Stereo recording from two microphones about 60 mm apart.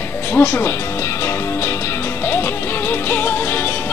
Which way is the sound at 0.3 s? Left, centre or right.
Left.